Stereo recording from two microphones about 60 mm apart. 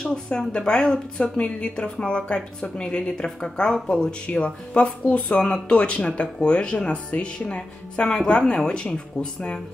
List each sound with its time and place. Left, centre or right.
0.0 s speech: centre